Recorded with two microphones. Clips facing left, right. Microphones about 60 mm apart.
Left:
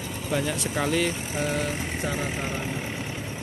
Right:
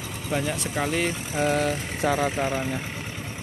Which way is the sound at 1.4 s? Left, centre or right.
Right.